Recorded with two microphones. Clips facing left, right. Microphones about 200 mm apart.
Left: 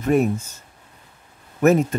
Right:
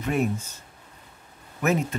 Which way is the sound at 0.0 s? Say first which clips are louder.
Left 7 dB; 45° left (ahead or behind).